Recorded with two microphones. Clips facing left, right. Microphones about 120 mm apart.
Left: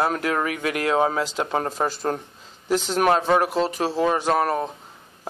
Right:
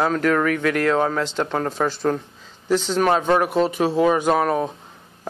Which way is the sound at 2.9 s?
5° left (ahead or behind).